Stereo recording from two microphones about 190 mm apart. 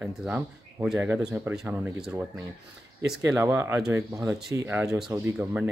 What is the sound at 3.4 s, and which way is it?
Speech, 15° right (ahead or behind).